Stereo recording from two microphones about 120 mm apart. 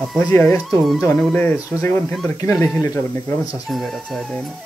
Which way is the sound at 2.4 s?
25° left (ahead or behind).